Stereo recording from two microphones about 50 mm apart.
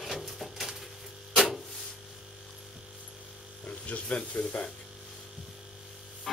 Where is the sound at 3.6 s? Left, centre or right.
Left.